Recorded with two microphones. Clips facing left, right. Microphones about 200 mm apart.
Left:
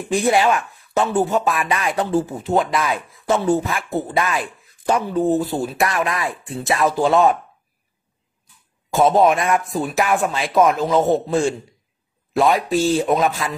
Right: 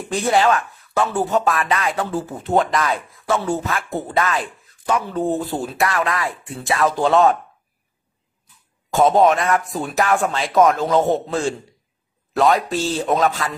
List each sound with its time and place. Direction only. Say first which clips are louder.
0.1 s speech: left 1 dB; 10° left (ahead or behind)
2.3 s speech: even; centre (ahead or behind)
2.8 s speech: even; 15° left (ahead or behind)
6.9 s speech: even; 10° left (ahead or behind)
8.9 s speech: even; 5° left (ahead or behind)